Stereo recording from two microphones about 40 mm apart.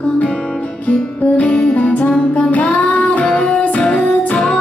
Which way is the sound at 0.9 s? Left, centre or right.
Left.